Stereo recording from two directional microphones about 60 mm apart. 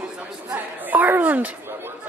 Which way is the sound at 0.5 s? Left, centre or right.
Right.